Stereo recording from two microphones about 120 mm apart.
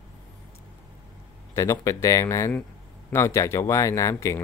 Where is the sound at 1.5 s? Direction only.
25° left (ahead or behind).